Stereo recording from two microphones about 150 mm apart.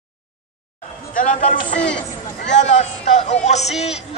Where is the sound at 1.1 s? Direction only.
55° left (ahead or behind).